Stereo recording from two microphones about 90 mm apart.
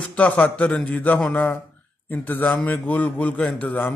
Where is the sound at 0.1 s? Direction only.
15° left (ahead or behind).